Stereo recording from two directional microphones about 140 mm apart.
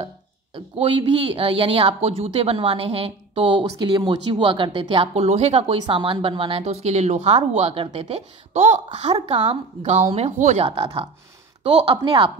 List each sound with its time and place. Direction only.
0.7 s speech: 40° right (ahead or behind)
3.6 s speech: 30° right (ahead or behind)
8.5 s speech: 60° right (ahead or behind)
9.1 s a woman's voice: 40° right (ahead or behind)